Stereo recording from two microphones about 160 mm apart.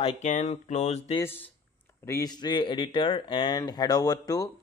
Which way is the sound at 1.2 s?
15° left (ahead or behind).